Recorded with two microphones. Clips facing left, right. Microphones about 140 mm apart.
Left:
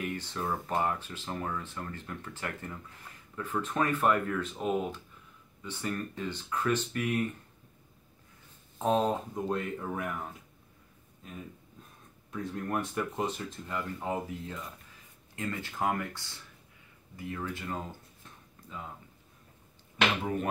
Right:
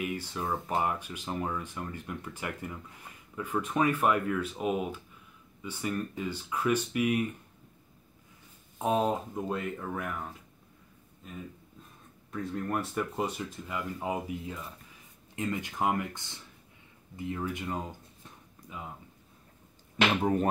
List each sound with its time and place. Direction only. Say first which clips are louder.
0.0 s speech: right 1 dB; 10° right (ahead or behind)
8.7 s speech: even; 10° right (ahead or behind)
11.2 s speech: right 1 dB; centre (ahead or behind)
13.7 s speech: even; 10° right (ahead or behind)